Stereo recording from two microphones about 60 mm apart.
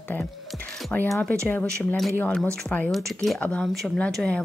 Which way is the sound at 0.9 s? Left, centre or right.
Left.